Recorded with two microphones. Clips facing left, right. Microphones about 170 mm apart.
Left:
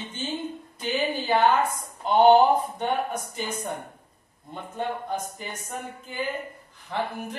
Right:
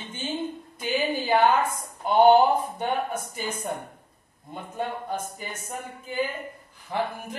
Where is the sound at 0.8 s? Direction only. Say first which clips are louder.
Right 1 dB; 10° right (ahead or behind).